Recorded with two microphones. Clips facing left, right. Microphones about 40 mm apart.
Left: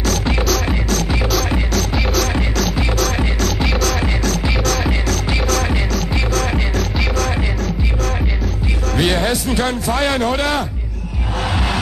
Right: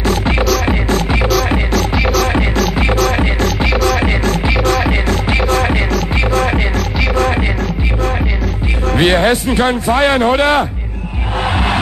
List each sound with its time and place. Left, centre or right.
0.7 s music: right
1.8 s music: centre
3.2 s music: right
8.9 s a man's voice: right